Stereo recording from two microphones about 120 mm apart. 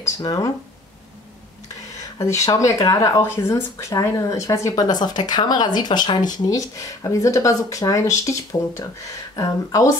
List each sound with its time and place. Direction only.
0.0 s speech: 30° left (ahead or behind)
2.1 s speech: 25° left (ahead or behind)